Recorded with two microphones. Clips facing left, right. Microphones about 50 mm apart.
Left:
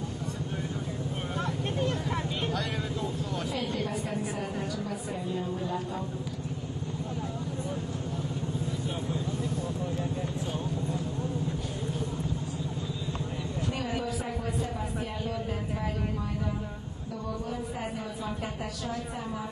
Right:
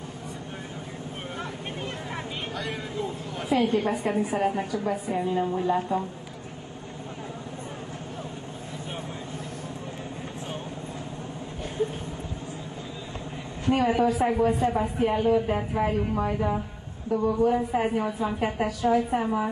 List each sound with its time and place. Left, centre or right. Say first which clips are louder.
1.4 s vehicle: left 5 dB; right
3.4 s a woman's voice: right 12 dB; right
13.7 s a woman's voice: right 13 dB; right